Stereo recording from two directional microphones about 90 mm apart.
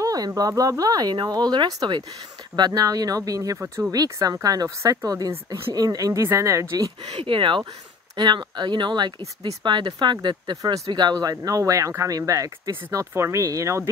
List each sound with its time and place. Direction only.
0.0 s speech: 40° right (ahead or behind)
3.5 s speech: 25° right (ahead or behind)
3.9 s speech: 45° right (ahead or behind)
7.2 s speech: 70° right (ahead or behind)
8.2 s speech: 55° right (ahead or behind); by 13.8 s 35° right (ahead or behind)